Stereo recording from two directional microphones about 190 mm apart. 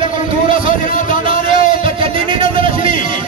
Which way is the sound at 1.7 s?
25° right (ahead or behind).